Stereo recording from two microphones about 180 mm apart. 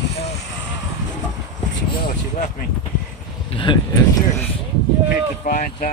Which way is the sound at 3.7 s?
25° left (ahead or behind).